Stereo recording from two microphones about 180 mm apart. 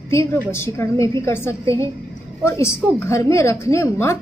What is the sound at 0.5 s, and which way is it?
A woman's voice, 15° left (ahead or behind).